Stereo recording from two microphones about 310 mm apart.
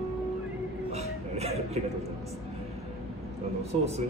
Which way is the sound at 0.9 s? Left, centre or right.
Right.